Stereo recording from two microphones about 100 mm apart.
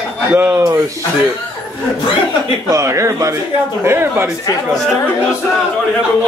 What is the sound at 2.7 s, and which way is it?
A man's voice, 30° right (ahead or behind).